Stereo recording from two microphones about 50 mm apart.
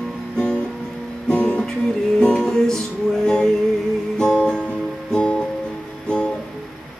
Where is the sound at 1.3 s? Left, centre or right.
Left.